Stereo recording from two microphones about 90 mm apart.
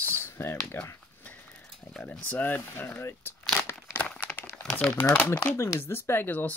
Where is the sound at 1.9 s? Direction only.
15° left (ahead or behind).